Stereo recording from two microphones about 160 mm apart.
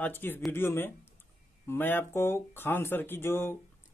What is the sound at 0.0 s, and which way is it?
Speech, 15° left (ahead or behind).